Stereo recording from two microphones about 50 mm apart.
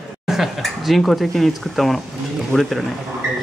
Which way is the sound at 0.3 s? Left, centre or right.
Centre.